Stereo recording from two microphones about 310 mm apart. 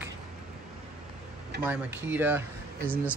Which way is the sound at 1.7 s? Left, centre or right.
Centre.